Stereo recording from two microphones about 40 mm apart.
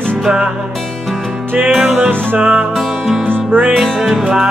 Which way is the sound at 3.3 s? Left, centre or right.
Right.